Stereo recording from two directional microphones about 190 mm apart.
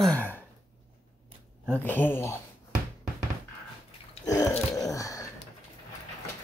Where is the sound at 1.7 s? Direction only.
10° left (ahead or behind).